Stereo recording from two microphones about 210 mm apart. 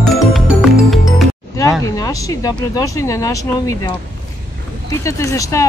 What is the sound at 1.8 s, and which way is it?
Speech, 15° left (ahead or behind).